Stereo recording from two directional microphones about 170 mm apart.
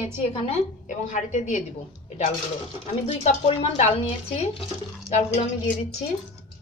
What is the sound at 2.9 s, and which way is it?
A woman's voice, 40° left (ahead or behind).